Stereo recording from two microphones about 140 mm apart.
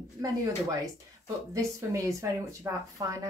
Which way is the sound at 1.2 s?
20° right (ahead or behind).